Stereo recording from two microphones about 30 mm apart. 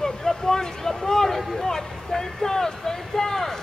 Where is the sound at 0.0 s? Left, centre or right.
Centre.